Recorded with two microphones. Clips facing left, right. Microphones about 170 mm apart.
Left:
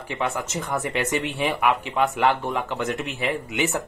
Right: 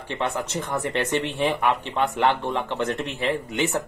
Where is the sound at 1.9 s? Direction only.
10° left (ahead or behind).